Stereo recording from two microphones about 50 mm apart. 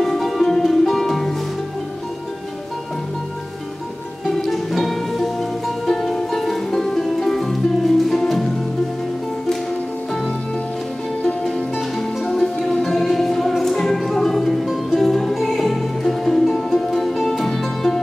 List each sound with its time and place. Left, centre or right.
0.0 s music: centre
4.4 s music: centre
11.4 s music: centre